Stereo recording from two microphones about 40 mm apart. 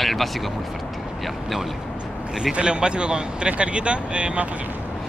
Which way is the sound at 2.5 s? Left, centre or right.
Right.